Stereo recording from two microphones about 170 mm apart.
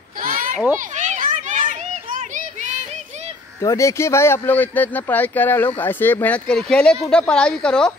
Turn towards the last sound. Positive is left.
turn(degrees=5)  # may be behind; listen again after turning